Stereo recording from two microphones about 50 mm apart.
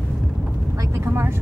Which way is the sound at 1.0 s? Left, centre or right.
Right.